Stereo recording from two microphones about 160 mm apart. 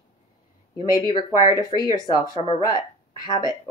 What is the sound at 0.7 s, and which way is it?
Speech, 30° left (ahead or behind).